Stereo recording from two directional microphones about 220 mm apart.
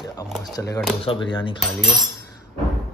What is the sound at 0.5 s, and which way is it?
A man's voice, 15° left (ahead or behind).